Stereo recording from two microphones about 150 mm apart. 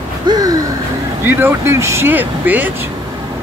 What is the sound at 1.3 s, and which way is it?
Speech, 15° right (ahead or behind).